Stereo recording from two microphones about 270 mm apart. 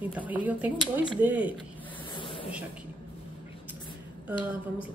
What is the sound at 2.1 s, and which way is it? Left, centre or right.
Snake, centre.